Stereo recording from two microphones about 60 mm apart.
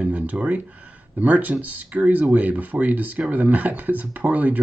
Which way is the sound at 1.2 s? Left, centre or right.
Right.